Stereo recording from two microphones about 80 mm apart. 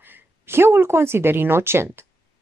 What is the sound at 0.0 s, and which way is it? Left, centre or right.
Speech, right.